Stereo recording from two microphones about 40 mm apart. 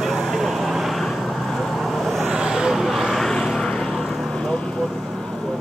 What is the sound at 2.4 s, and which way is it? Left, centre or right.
Vehicle, centre.